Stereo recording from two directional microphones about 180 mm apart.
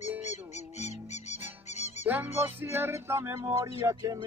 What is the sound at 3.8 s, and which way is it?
Speech, 20° right (ahead or behind).